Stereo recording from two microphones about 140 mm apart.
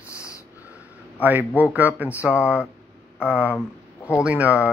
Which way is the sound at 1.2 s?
10° right (ahead or behind).